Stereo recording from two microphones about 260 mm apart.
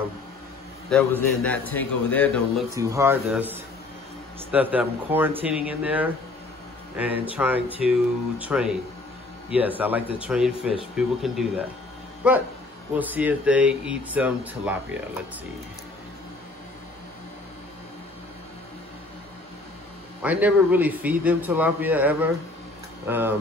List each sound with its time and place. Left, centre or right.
0.8 s speech: centre
2.7 s a man's voice: centre
20.2 s a man's voice: centre